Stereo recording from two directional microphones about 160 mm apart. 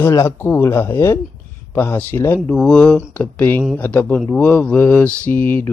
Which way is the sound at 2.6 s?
5° left (ahead or behind).